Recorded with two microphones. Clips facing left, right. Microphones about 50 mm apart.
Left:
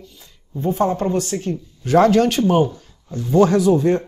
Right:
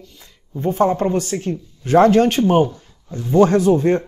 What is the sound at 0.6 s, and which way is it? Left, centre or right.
Speech, right.